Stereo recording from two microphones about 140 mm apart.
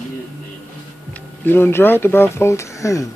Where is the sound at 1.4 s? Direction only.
15° left (ahead or behind).